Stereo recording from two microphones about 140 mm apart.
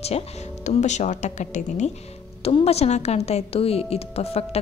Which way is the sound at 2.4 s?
45° left (ahead or behind).